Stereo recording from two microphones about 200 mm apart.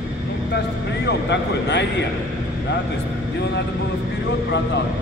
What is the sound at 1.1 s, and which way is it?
Speech, 60° left (ahead or behind).